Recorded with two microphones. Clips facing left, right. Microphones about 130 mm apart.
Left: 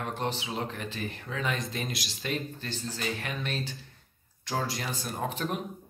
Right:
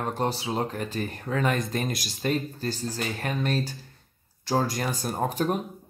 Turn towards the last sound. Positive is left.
turn(degrees=-40)  # may be behind; listen again after turning